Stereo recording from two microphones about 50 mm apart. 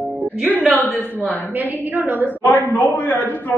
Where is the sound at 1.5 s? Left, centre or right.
Right.